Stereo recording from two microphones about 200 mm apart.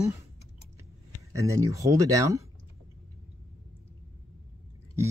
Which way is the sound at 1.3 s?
15° right (ahead or behind).